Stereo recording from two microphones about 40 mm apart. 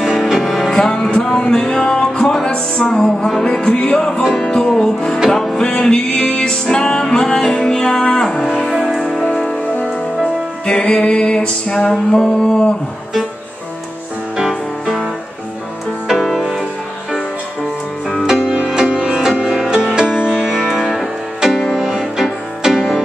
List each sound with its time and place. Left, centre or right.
0.0 s music: centre
0.7 s music: centre
3.3 s music: centre
3.6 s music: left
5.6 s music: left; by 7.7 s centre
7.7 s music: centre
8.4 s music: centre
10.6 s music: left
18.8 s music: right